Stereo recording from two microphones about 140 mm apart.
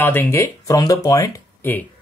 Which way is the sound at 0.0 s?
15° left (ahead or behind).